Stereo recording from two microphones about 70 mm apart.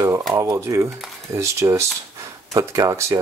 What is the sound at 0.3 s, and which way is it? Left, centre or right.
Speech, right.